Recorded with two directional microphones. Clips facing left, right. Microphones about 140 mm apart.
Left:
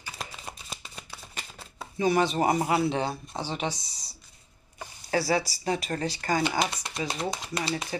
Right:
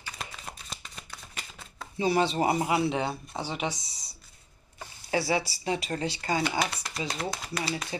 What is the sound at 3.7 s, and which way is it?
Speech, centre (ahead or behind).